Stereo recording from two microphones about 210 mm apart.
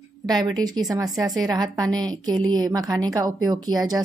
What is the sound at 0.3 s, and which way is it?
Speech, 20° right (ahead or behind).